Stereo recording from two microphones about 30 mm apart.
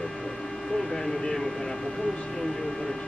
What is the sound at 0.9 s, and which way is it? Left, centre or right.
Speech, centre.